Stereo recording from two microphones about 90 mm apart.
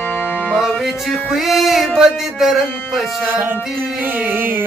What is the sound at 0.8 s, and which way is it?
Music, 5° right (ahead or behind).